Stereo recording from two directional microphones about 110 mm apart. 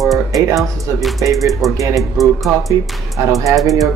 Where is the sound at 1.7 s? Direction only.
30° right (ahead or behind).